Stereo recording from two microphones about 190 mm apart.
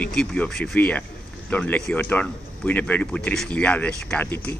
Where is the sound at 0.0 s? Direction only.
5° left (ahead or behind).